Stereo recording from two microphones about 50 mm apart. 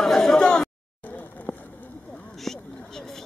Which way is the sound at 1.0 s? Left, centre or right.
Left.